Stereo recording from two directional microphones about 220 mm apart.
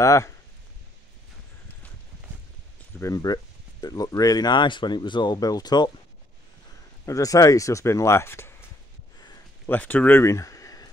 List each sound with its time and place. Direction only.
0.0 s speech: 15° left (ahead or behind)
3.0 s speech: 15° left (ahead or behind)
7.1 s speech: 15° left (ahead or behind)
9.7 s speech: 10° left (ahead or behind)